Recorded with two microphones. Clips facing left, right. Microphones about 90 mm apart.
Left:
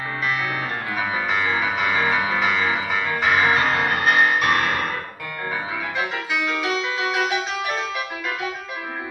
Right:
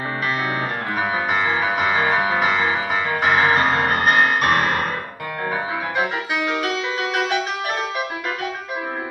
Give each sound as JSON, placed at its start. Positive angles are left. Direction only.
{"t": 1.4, "sound": "music", "side_deg": -15}
{"t": 2.1, "sound": "music", "side_deg": -40}
{"t": 3.7, "sound": "music", "side_deg": -40}